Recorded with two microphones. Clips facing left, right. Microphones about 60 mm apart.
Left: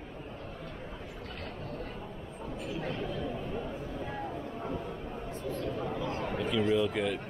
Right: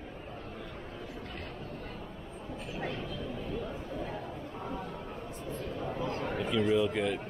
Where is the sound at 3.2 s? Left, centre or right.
Left.